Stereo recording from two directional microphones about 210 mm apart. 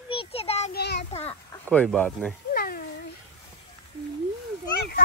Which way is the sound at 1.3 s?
10° left (ahead or behind).